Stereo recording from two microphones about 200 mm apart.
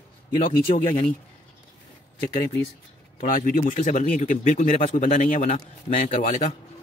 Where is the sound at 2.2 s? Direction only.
45° left (ahead or behind).